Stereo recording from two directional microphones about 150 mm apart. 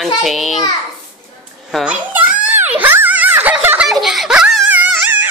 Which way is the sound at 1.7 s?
5° right (ahead or behind).